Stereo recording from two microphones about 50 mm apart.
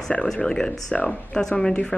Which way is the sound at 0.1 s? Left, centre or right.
Left.